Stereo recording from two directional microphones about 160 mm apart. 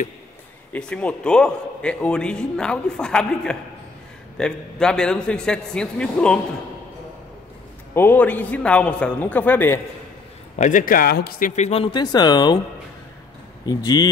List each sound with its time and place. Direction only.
0.7 s a man's voice: 5° left (ahead or behind)
7.9 s a man's voice: 15° left (ahead or behind)
10.5 s speech: 55° left (ahead or behind); by 12.5 s 25° left (ahead or behind)
13.7 s speech: 25° left (ahead or behind)